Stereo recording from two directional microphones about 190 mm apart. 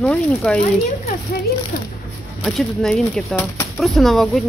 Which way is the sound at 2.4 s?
Centre (ahead or behind).